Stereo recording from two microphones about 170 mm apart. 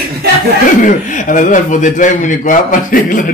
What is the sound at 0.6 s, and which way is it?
A man's voice, 50° left (ahead or behind).